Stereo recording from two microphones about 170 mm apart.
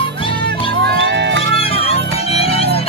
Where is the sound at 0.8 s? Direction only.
90° right.